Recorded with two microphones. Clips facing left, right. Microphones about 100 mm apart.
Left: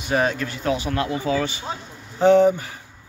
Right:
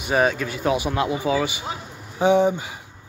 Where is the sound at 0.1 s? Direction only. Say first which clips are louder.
Right 1 dB; 5° right (ahead or behind).